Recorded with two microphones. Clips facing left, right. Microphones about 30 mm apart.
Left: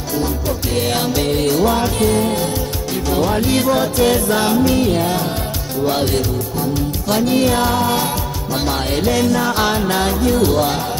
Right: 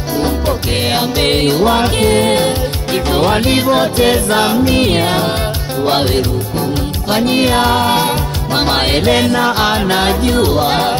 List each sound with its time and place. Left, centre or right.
0.2 s music: right
1.2 s music: right
1.5 s music: right
3.5 s music: right
4.7 s music: right
7.2 s music: right
8.5 s music: right
9.5 s music: right